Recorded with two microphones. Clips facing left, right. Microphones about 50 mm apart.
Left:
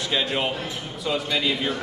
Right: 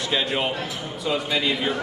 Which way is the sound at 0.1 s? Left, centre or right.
Centre.